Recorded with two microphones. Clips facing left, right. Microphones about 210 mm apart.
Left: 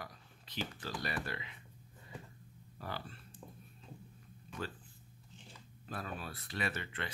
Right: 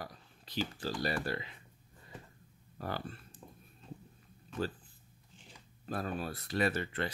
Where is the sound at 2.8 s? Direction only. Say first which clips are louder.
Right 5 dB; 50° right (ahead or behind).